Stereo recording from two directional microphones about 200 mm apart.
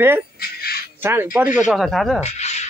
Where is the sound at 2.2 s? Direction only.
35° left (ahead or behind).